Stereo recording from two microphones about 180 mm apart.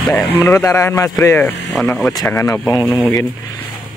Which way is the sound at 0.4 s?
15° left (ahead or behind).